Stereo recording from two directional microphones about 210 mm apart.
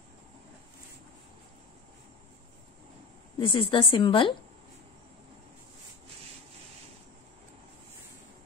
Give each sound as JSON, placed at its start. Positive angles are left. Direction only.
{"t": 3.3, "sound": "a woman's voice", "side_deg": 25}